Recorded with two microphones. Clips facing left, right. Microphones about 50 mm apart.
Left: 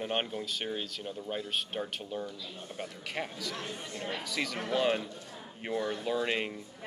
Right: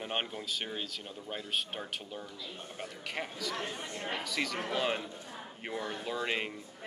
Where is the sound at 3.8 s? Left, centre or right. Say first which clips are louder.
Even; right.